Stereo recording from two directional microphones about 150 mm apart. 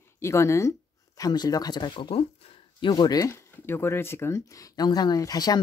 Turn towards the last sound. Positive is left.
turn(degrees=25)  # may be behind; listen again after turning